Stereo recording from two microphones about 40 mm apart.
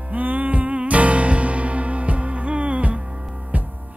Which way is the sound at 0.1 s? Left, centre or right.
Right.